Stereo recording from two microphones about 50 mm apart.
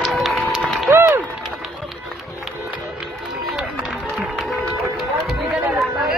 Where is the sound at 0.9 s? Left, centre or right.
Right.